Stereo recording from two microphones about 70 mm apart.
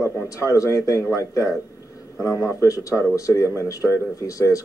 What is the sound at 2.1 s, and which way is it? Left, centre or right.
Speech, centre.